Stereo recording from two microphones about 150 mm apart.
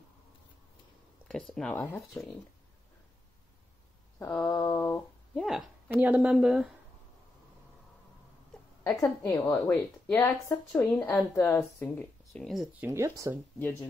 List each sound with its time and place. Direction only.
1.3 s speech: centre (ahead or behind)
4.2 s mantra: 15° left (ahead or behind)
4.5 s a woman's voice: 20° left (ahead or behind)
5.3 s speech: centre (ahead or behind)
8.8 s a woman's voice: 20° left (ahead or behind)
12.3 s speech: centre (ahead or behind)
12.8 s speech: 20° right (ahead or behind)
13.6 s a woman's voice: 10° left (ahead or behind)